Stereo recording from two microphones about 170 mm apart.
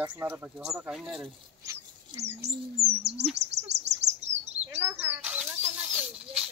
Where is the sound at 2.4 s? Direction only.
70° right (ahead or behind).